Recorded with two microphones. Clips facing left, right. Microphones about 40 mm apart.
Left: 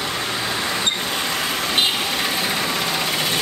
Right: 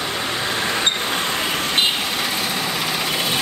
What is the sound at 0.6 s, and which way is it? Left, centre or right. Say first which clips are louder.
Vehicle: right 2 dB; right.